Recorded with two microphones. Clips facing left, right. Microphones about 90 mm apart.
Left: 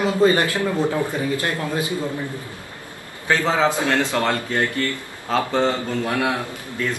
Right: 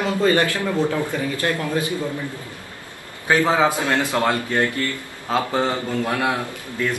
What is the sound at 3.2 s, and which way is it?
Speech, 15° right (ahead or behind).